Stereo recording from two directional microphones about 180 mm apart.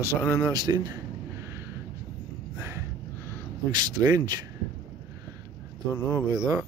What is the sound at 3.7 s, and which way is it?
Speech, 20° right (ahead or behind).